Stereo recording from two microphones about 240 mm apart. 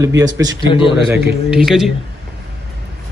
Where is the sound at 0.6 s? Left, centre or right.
Left.